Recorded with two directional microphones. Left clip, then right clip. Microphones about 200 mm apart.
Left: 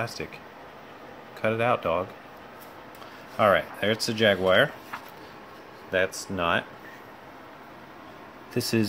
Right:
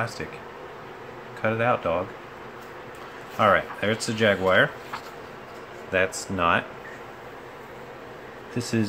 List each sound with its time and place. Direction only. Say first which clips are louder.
1.4 s speech: right 1 dB; 25° left (ahead or behind)
3.3 s speech: right 1 dB; 25° left (ahead or behind)
5.9 s speech: right 2 dB; 15° left (ahead or behind)
8.5 s speech: left 2 dB; 25° left (ahead or behind)